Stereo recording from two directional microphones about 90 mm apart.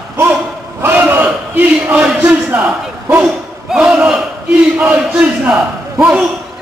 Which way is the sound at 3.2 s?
10° right (ahead or behind).